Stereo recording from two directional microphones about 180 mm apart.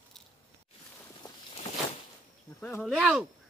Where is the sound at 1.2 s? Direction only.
30° left (ahead or behind).